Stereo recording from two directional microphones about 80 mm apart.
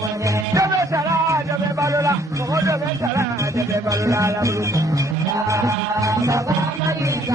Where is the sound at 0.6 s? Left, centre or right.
Right.